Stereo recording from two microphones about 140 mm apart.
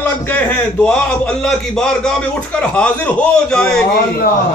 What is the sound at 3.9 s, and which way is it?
Speech, 90° left.